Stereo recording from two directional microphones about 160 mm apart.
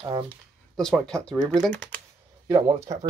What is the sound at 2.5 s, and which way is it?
Speech, 25° right (ahead or behind).